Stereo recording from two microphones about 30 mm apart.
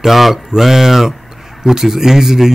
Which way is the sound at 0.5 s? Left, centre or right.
Centre.